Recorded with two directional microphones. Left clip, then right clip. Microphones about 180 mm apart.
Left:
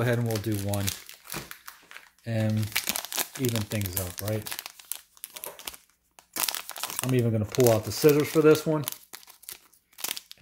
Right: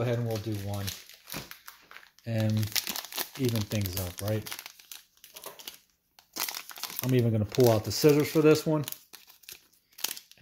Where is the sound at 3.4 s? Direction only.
10° left (ahead or behind).